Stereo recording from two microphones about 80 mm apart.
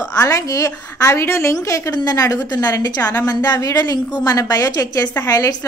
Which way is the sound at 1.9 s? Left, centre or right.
Left.